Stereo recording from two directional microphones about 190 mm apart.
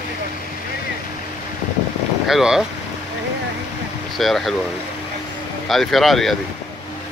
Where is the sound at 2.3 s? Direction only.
Centre (ahead or behind).